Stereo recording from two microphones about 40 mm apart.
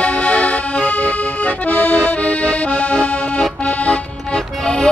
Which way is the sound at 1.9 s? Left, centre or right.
Left.